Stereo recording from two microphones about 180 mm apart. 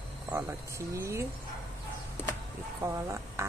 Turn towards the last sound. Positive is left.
turn(degrees=-15)  # may be behind; listen again after turning